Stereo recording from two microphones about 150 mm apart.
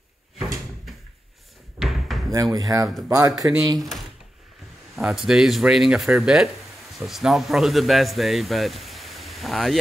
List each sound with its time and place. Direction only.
1.8 s a sound: centre (ahead or behind)
2.3 s speech: 25° right (ahead or behind)
4.9 s speech: 5° right (ahead or behind)